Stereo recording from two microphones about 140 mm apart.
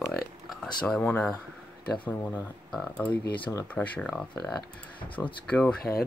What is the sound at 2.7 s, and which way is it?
Speech, 10° left (ahead or behind).